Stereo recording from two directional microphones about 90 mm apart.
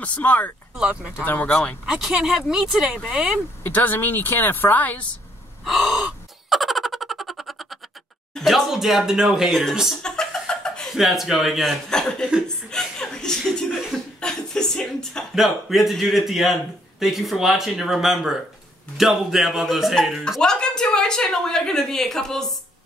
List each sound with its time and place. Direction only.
0.0 s speech: 15° left (ahead or behind)
0.7 s speech: 10° right (ahead or behind)
1.2 s speech: 20° left (ahead or behind)
1.9 s speech: 5° right (ahead or behind)
3.6 s speech: 20° left (ahead or behind)
5.7 s speech: centre (ahead or behind)
6.5 s a sound: centre (ahead or behind)
8.4 s speech: centre (ahead or behind)
12.4 s chuckle: 5° left (ahead or behind)
13.9 s speech: 5° left (ahead or behind)